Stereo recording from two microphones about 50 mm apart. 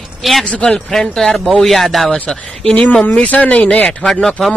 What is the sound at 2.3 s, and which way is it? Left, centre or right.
Mantra, centre.